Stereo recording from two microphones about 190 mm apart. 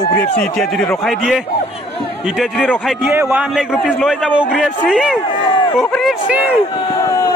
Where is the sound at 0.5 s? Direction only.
Centre (ahead or behind).